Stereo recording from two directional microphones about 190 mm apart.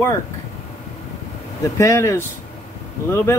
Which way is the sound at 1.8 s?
15° left (ahead or behind).